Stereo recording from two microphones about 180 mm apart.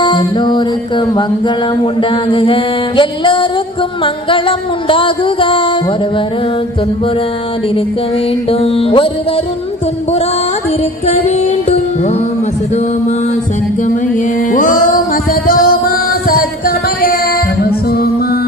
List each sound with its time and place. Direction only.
0.0 s music: 25° left (ahead or behind)
8.5 s music: 35° left (ahead or behind)
11.1 s music: 35° left (ahead or behind)
14.5 s music: 45° left (ahead or behind)